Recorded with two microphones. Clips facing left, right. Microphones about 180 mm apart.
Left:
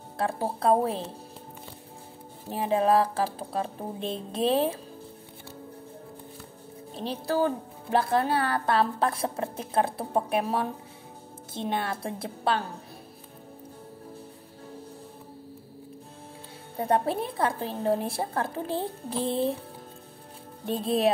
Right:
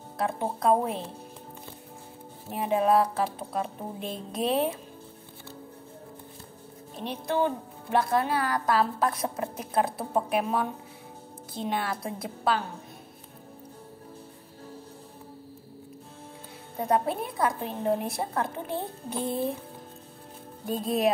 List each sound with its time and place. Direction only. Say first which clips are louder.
0.2 s a woman's voice: even; 30° left (ahead or behind)
2.5 s a woman's voice: even; 30° left (ahead or behind)
7.0 s a woman's voice: left 1 dB; 30° left (ahead or behind)
16.7 s a woman's voice: left 1 dB; 30° left (ahead or behind)
20.8 s a woman's voice: left 1 dB; 30° left (ahead or behind)